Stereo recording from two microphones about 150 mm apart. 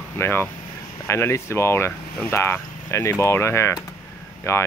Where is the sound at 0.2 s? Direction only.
15° left (ahead or behind).